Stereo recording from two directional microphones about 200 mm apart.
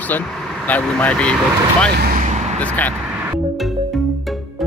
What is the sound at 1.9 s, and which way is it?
Speech, 50° right (ahead or behind).